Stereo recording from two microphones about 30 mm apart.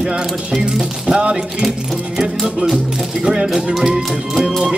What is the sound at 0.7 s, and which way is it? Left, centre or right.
Speech, right.